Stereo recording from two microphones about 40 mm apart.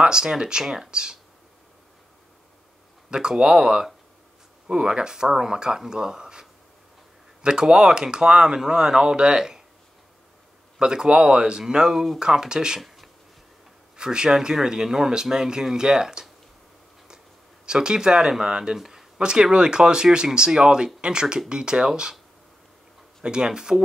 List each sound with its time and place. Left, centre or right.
0.0 s speech: centre
3.1 s speech: right
7.4 s speech: centre
10.8 s speech: centre
12.8 s a sound: centre
13.9 s speech: centre
17.7 s speech: centre
18.8 s a sound: centre
19.1 s speech: right
23.2 s speech: centre